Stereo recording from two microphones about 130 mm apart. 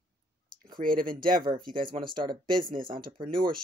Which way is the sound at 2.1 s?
40° right (ahead or behind).